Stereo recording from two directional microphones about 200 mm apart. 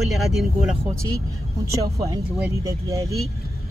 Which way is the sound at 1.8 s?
20° right (ahead or behind).